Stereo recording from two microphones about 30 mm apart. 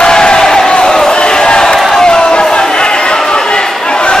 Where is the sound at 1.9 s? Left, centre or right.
Left.